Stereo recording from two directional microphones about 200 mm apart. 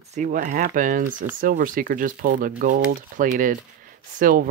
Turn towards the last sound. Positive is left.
turn(degrees=-45)  # may be behind; listen again after turning